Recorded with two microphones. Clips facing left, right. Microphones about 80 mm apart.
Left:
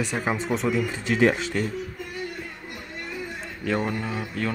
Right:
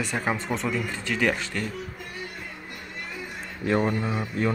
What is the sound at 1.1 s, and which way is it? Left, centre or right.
Speech, left.